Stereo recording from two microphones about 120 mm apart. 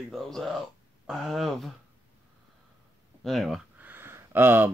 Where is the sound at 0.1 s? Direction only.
Centre (ahead or behind).